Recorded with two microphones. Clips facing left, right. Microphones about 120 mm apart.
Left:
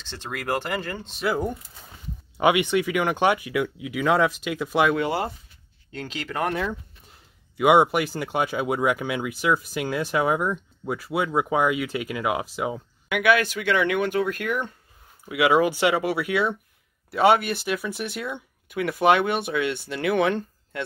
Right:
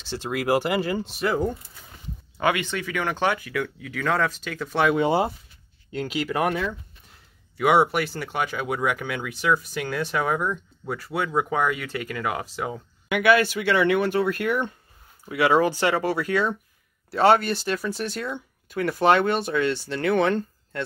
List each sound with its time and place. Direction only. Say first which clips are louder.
0.0 s speech: right 6 dB; 10° right (ahead or behind)
1.2 s speech: even; 10° left (ahead or behind)
4.9 s speech: right 4 dB; 20° right (ahead or behind)
7.5 s speech: left 2 dB; 15° left (ahead or behind)
13.1 s speech: right 2 dB; centre (ahead or behind)